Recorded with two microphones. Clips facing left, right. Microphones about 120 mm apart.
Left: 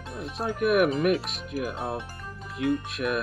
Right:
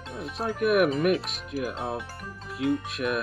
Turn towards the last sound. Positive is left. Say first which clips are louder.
# even
turn(degrees=0)  # may be behind; listen again after turning